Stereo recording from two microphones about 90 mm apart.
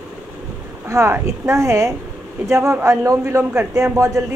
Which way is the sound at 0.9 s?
30° right (ahead or behind).